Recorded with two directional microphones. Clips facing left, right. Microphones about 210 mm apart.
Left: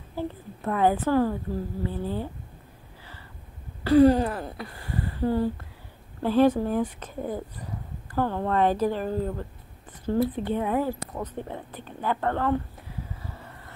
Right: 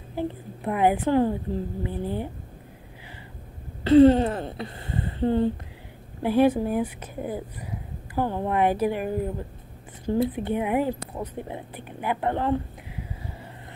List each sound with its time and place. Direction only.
0.1 s speech: 15° right (ahead or behind)
3.8 s a sound: 25° right (ahead or behind)
6.2 s speech: 10° right (ahead or behind)